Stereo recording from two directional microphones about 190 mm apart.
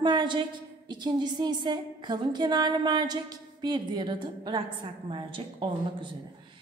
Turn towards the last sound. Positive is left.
turn(degrees=-25)  # may be behind; listen again after turning